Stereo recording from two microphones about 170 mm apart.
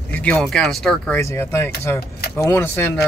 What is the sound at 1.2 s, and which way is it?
Speech, 15° left (ahead or behind).